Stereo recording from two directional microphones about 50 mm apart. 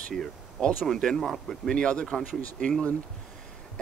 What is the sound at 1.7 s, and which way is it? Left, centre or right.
Speech, left.